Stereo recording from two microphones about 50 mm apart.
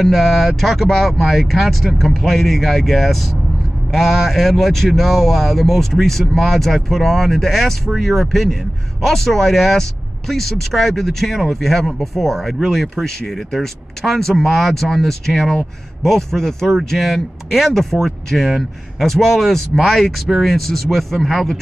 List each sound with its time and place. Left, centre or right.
0.0 s speech: centre